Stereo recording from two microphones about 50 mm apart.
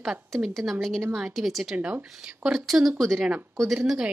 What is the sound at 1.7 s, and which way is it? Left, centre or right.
Speech, right.